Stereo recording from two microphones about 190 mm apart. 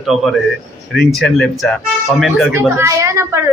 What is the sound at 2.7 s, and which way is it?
Speech, 15° right (ahead or behind).